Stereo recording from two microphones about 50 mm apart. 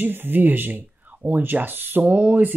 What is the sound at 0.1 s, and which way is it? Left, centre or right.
Speech, right.